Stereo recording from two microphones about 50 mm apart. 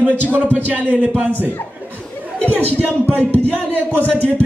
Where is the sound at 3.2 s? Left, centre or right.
Left.